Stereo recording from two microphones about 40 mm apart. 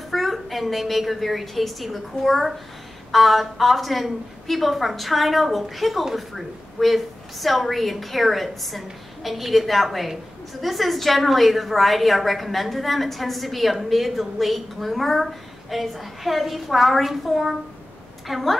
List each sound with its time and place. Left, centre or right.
0.1 s a woman's voice: centre